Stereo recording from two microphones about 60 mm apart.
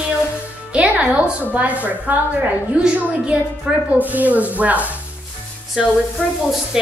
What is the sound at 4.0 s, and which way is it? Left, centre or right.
Speech, right.